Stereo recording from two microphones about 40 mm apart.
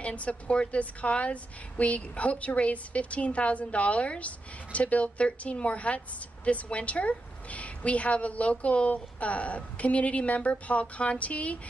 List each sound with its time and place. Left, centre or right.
0.0 s a woman's voice: left